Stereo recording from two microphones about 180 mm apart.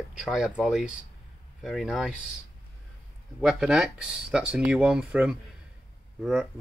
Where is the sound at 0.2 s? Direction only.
5° right (ahead or behind).